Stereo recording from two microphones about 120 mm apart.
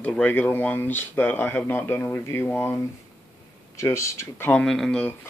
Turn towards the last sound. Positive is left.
turn(degrees=5)  # may be behind; listen again after turning